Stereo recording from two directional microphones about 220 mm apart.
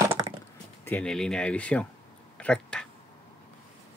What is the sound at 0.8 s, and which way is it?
Speech, 5° left (ahead or behind).